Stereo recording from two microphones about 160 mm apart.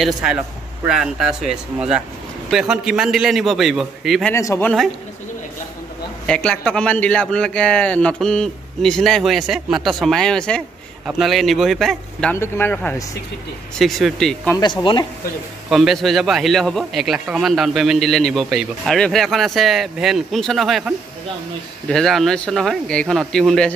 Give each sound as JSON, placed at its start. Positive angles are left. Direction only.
{"t": 0.0, "sound": "a man's voice", "side_deg": -5}
{"t": 4.3, "sound": "speech", "side_deg": 15}
{"t": 6.2, "sound": "a man's voice", "side_deg": 5}
{"t": 13.7, "sound": "a man's voice", "side_deg": 0}
{"t": 14.6, "sound": "speech", "side_deg": 30}
{"t": 15.7, "sound": "a man's voice", "side_deg": 0}